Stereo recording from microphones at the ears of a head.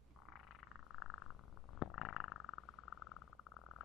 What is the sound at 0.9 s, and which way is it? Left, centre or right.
Frog, left.